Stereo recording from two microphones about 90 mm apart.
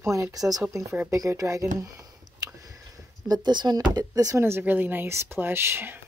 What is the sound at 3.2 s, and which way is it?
Speech, 50° right (ahead or behind).